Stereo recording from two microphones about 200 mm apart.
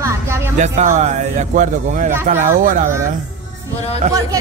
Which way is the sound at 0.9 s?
35° right (ahead or behind).